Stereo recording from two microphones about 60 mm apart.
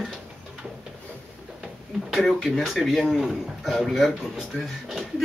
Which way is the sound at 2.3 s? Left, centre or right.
Centre.